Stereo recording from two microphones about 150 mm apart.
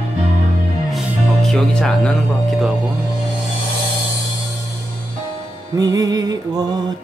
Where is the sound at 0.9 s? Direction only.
Centre (ahead or behind).